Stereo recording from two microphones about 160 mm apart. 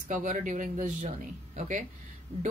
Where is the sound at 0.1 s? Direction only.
55° right (ahead or behind).